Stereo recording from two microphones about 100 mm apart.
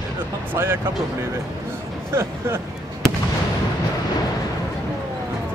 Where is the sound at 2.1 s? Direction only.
25° right (ahead or behind).